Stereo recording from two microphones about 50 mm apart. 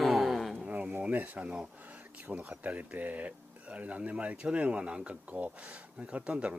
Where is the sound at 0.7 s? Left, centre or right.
Right.